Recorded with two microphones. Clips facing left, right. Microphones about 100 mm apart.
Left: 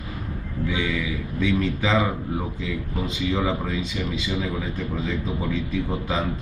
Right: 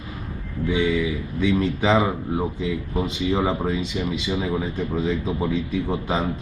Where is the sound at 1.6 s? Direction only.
30° right (ahead or behind).